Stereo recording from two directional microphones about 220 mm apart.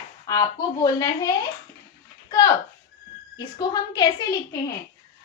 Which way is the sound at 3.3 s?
20° left (ahead or behind).